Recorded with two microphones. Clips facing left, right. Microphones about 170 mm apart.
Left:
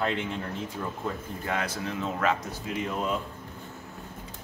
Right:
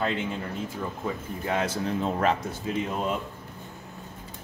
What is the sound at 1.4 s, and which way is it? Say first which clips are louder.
Speech: right 4 dB; 25° right (ahead or behind).